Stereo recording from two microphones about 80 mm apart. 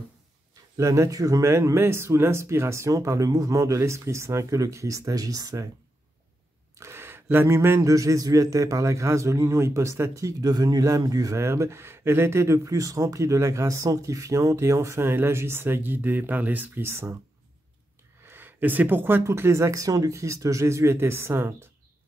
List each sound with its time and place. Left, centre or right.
0.7 s a man's voice: right
6.8 s a sound: right
7.4 s a man's voice: right
7.9 s a man's voice: right
18.2 s a sound: right
19.2 s a man's voice: right